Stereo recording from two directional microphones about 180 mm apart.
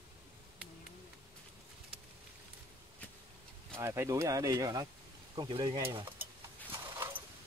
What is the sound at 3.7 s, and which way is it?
Speech, 15° right (ahead or behind).